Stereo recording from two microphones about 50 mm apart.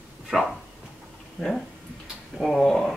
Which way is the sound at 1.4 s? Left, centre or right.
Left.